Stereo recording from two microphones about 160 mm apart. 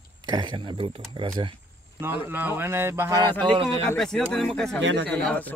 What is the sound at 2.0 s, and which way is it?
Speech, 15° right (ahead or behind).